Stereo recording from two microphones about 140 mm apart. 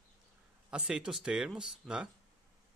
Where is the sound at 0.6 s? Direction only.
5° right (ahead or behind).